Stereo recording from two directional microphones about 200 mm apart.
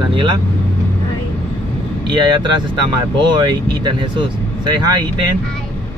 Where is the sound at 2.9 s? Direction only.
20° right (ahead or behind).